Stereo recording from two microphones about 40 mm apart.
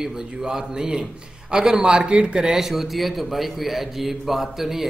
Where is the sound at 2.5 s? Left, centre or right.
Centre.